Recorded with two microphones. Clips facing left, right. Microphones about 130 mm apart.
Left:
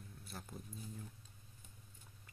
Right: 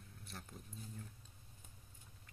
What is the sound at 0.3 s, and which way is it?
Speech, 5° left (ahead or behind).